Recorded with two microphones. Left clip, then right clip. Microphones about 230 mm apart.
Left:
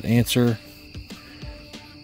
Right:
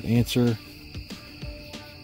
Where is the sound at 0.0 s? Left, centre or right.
Left.